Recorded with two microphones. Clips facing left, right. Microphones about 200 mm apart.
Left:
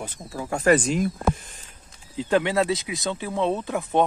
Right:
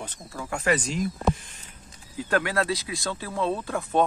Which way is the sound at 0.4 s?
30° left (ahead or behind).